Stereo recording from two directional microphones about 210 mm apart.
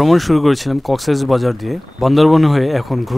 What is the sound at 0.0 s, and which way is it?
Speech, centre (ahead or behind).